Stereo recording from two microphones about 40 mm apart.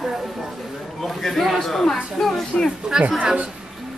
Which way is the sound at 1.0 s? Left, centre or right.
Centre.